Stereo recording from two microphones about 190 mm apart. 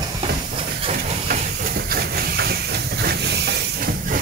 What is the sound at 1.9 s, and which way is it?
Steam, 55° right (ahead or behind).